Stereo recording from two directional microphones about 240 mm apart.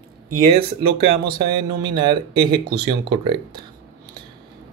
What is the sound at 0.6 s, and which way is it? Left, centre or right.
Speech, right.